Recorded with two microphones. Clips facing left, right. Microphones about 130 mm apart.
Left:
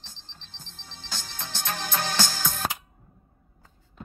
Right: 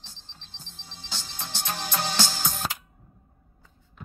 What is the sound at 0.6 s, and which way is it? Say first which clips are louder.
Music: even; 15° right (ahead or behind).